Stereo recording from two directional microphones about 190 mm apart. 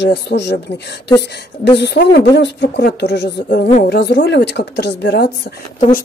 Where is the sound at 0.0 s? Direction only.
65° left (ahead or behind).